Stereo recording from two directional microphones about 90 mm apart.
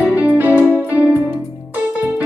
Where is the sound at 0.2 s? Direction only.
15° right (ahead or behind).